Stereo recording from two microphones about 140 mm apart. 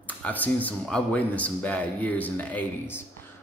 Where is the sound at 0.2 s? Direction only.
10° left (ahead or behind).